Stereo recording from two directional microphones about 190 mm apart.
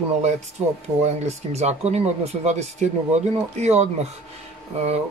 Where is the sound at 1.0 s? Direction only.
35° right (ahead or behind).